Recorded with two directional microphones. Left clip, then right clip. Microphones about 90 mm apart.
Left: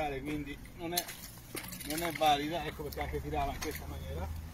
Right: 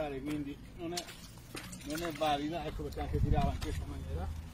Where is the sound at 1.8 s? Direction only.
5° left (ahead or behind).